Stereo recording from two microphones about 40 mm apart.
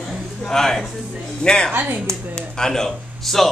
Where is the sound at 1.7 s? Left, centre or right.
Right.